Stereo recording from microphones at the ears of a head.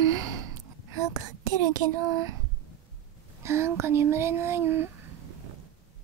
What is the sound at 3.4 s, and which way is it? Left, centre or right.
Speech, right.